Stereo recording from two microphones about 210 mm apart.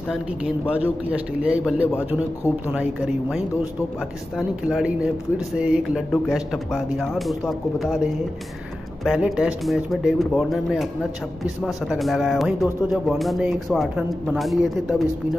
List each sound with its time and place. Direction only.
0.7 s speech: 5° right (ahead or behind)
4.7 s speech: 5° right (ahead or behind)